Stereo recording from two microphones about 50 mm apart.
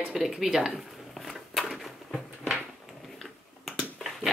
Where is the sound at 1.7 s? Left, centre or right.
Centre.